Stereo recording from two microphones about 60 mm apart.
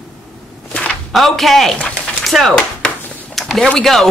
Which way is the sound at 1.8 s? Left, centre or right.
Left.